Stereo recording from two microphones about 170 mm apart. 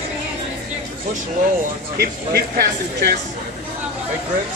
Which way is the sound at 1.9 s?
70° right (ahead or behind).